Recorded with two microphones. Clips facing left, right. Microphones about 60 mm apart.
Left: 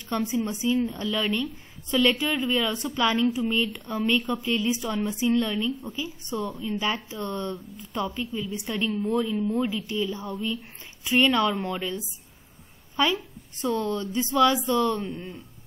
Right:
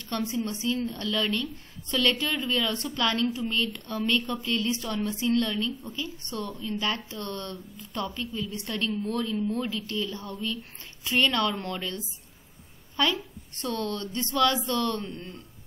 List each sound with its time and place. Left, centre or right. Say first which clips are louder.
0.1 s a woman's voice: left 3 dB; centre
4.4 s a woman's voice: left 3 dB; centre; by 11.9 s left
12.9 s a woman's voice: left 2 dB; centre